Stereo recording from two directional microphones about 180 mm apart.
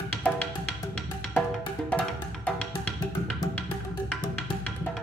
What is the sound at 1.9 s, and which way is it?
Music, 5° left (ahead or behind).